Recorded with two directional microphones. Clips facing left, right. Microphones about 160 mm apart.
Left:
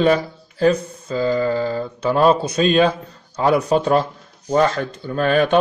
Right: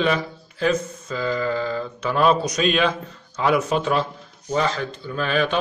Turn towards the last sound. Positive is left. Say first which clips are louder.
# left 5 dB
turn(degrees=50)  # may be behind; listen again after turning